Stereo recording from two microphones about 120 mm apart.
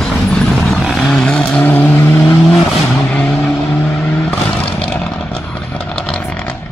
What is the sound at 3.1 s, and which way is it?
Vehicle, 5° left (ahead or behind).